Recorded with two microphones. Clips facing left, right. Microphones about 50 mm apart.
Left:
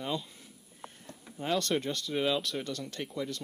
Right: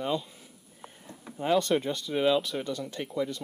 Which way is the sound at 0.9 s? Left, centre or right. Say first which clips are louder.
Right 4 dB; centre.